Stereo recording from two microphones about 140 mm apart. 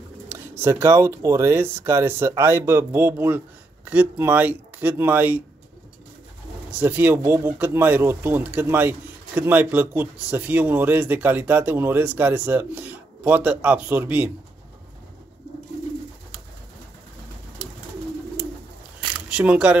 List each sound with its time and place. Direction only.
0.3 s speech: 15° right (ahead or behind)
6.7 s speech: 10° right (ahead or behind)
19.2 s speech: 10° right (ahead or behind)